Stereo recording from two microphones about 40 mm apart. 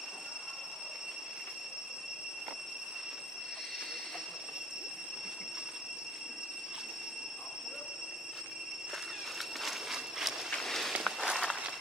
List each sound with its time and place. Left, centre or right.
9.6 s a sound: centre
10.5 s walk: centre
11.1 s walk: centre